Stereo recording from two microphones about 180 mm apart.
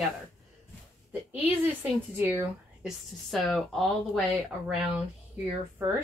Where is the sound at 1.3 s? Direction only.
10° right (ahead or behind).